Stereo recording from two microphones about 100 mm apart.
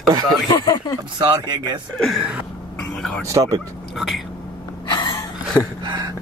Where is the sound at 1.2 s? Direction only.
50° right (ahead or behind).